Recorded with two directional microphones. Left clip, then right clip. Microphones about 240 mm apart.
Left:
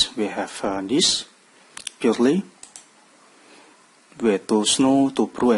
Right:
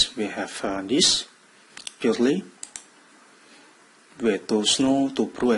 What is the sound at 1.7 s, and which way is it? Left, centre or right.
Camera, left.